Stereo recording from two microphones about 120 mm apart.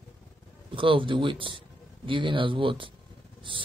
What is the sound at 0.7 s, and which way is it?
Speech, 45° right (ahead or behind).